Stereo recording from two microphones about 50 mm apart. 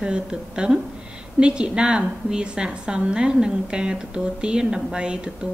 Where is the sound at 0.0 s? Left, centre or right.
Centre.